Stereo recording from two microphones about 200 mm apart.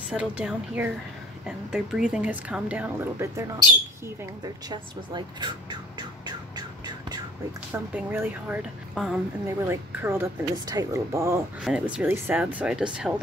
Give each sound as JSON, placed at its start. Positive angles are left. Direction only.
{"t": 0.1, "sound": "a woman's voice", "side_deg": -5}
{"t": 4.6, "sound": "car alarm", "side_deg": -20}
{"t": 7.7, "sound": "a woman's voice", "side_deg": -10}